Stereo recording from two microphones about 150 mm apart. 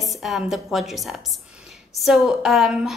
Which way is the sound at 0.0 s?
Centre (ahead or behind).